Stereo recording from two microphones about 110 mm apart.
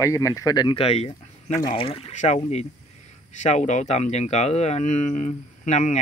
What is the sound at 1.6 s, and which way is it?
Speech, 55° left (ahead or behind).